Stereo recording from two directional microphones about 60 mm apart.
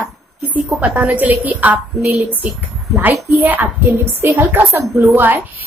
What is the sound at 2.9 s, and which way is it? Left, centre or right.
A woman's voice, right.